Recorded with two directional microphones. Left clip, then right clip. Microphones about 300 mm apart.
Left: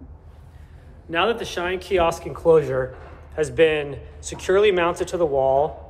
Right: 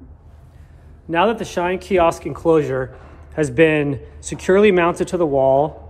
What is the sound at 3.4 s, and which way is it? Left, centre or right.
Speech, right.